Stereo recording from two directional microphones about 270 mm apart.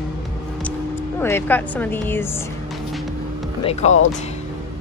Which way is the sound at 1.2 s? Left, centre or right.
Centre.